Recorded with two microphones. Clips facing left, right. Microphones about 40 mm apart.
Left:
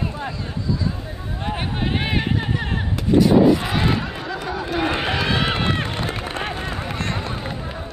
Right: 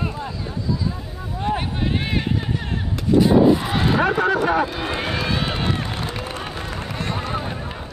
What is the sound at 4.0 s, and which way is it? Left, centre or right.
Speech, right.